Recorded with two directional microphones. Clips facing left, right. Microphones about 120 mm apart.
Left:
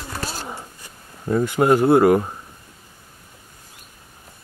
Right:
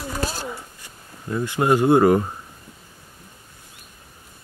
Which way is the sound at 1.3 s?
30° left (ahead or behind).